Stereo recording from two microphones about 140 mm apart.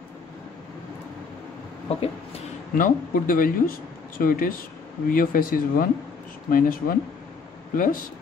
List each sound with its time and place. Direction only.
1.9 s speech: 45° left (ahead or behind)
2.7 s speech: 85° left
7.7 s speech: 80° left